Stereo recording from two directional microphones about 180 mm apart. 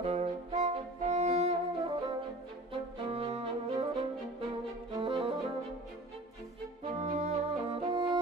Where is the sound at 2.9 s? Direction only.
35° right (ahead or behind).